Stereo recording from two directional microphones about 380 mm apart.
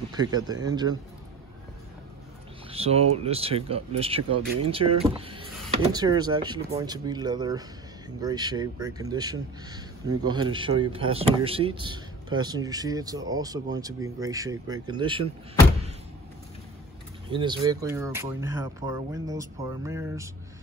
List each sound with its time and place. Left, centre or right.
0.1 s speech: centre
2.7 s a sound: centre
3.3 s speech: centre
17.3 s speech: centre